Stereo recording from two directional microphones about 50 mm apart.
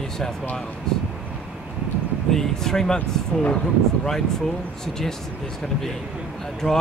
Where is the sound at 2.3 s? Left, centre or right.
Centre.